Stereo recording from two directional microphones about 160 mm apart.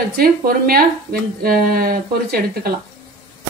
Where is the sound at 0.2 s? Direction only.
70° right (ahead or behind).